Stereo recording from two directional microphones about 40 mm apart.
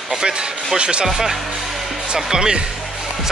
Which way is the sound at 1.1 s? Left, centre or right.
Centre.